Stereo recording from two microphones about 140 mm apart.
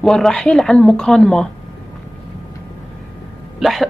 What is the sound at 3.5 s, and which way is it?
Speech, centre (ahead or behind).